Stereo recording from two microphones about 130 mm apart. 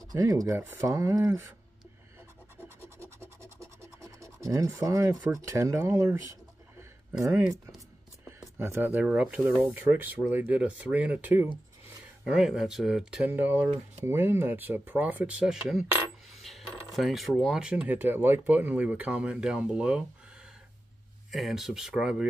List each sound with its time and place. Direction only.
0.1 s speech: 25° right (ahead or behind)
4.4 s speech: 25° right (ahead or behind)
7.2 s speech: 25° right (ahead or behind)
12.3 s speech: 5° right (ahead or behind)
13.3 s speech: 15° right (ahead or behind)
21.3 s speech: centre (ahead or behind)